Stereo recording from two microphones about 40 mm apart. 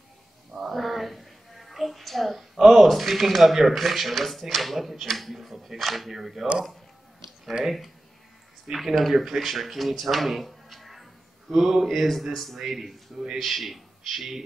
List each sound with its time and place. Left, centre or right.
0.5 s music: centre
2.6 s speech: centre
7.6 s a man's voice: centre